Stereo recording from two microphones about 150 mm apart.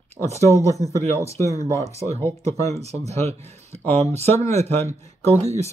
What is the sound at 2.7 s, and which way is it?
Speech, 45° right (ahead or behind).